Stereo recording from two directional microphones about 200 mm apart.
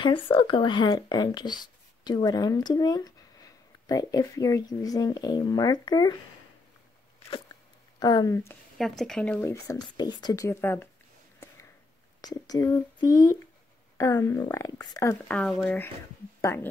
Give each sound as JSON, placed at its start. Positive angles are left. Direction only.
{"t": 0.0, "sound": "speech", "side_deg": 25}
{"t": 8.0, "sound": "speech", "side_deg": 20}
{"t": 8.7, "sound": "speech", "side_deg": 0}
{"t": 12.2, "sound": "speech", "side_deg": 20}
{"t": 15.2, "sound": "speech", "side_deg": 5}
{"t": 16.3, "sound": "a sound", "side_deg": 15}